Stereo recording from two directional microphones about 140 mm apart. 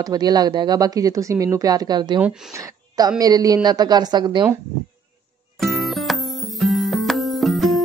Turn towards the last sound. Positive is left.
turn(degrees=0)  # may be behind; listen again after turning